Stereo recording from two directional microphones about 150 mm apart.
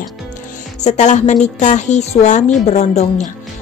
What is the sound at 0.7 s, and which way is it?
A woman's voice, 50° left (ahead or behind).